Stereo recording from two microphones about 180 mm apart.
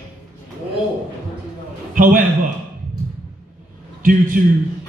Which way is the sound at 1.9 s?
50° right (ahead or behind).